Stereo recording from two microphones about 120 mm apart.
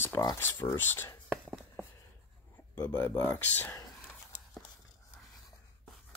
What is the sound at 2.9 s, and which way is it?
Speech, 15° left (ahead or behind).